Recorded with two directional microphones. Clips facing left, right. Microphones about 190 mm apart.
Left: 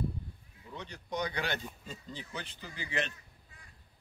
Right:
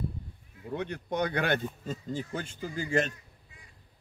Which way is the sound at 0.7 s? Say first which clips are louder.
Right 9 dB; 55° right (ahead or behind).